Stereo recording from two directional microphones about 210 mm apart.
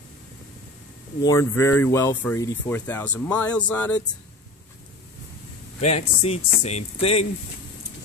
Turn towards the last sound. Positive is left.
turn(degrees=30)  # may be behind; listen again after turning